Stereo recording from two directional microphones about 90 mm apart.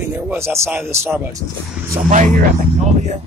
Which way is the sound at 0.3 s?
25° right (ahead or behind).